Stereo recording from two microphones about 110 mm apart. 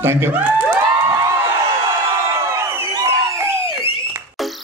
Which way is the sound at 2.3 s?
25° right (ahead or behind).